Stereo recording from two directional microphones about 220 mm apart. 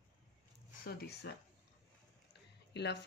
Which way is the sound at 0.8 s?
45° left (ahead or behind).